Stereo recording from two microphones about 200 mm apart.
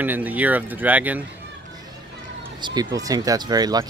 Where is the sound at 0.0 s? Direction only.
10° right (ahead or behind).